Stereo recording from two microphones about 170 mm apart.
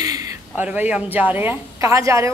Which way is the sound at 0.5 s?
10° right (ahead or behind).